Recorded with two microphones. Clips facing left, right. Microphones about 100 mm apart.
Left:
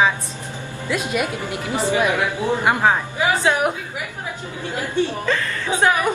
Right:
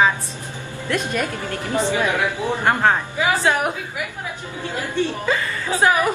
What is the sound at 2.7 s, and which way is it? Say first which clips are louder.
Speech: right 1 dB; 5° left (ahead or behind).